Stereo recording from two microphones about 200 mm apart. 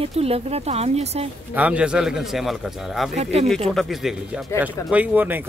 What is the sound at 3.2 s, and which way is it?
Speech, 30° right (ahead or behind).